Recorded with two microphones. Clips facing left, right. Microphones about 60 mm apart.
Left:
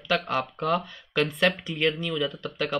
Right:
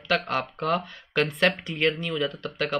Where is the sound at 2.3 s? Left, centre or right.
Right.